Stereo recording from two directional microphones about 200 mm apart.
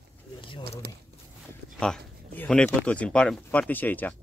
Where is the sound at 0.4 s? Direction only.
25° left (ahead or behind).